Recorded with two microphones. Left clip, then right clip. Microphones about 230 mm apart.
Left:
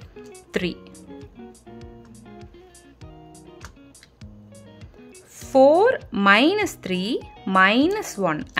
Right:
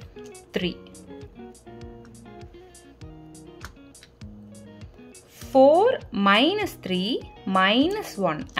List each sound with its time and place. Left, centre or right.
0.1 s music: centre
0.5 s music: centre
0.7 s music: centre
5.4 s speech: centre